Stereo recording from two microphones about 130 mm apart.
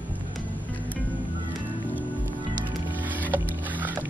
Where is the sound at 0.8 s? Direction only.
10° left (ahead or behind).